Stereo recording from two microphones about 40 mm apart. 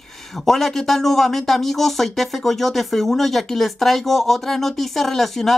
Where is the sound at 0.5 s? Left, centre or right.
Centre.